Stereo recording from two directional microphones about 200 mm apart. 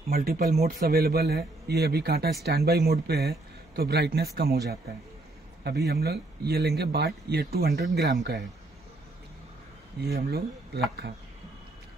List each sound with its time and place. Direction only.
0.1 s speech: 50° right (ahead or behind)
10.0 s speech: 50° right (ahead or behind)
11.0 s speech: 65° right (ahead or behind)